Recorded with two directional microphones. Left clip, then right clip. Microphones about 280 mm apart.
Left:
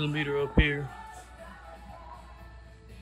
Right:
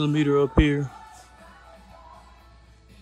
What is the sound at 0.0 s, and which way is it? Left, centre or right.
Speech, right.